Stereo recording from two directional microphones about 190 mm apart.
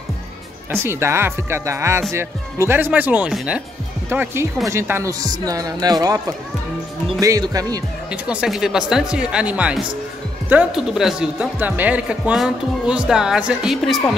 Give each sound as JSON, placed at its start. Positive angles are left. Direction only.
{"t": 0.7, "sound": "speech", "side_deg": -10}
{"t": 8.1, "sound": "speech", "side_deg": -5}